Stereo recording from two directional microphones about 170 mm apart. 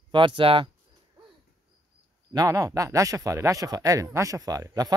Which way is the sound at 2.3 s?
20° right (ahead or behind).